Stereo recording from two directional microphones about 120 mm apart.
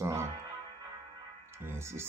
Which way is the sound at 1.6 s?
20° right (ahead or behind).